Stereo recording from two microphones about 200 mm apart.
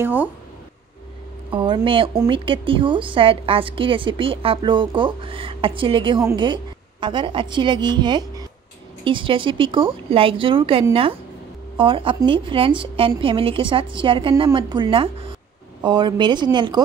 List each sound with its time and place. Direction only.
0.0 s speech: 10° right (ahead or behind)
1.5 s a woman's voice: 25° right (ahead or behind)